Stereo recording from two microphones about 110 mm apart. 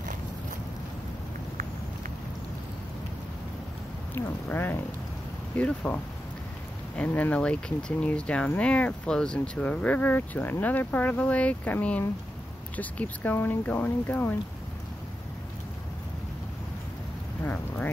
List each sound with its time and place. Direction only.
4.1 s speech: 20° left (ahead or behind)
7.0 s speech: 15° left (ahead or behind)